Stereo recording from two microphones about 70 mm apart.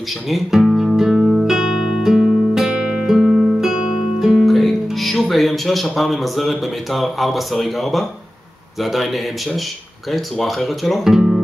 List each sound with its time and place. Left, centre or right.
0.3 s guitar: centre
4.4 s music: centre
5.9 s speech: centre